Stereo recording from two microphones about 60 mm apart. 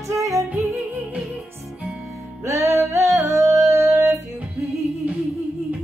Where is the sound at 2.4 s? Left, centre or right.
Right.